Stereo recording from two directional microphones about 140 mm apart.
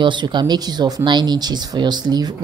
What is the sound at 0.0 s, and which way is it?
Speech, 35° right (ahead or behind).